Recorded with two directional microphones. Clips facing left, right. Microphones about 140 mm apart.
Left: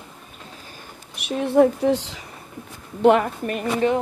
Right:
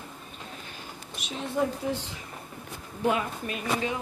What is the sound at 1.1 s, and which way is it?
Speech, 65° left (ahead or behind).